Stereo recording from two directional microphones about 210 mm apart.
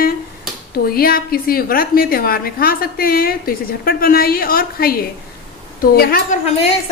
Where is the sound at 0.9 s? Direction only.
45° left (ahead or behind).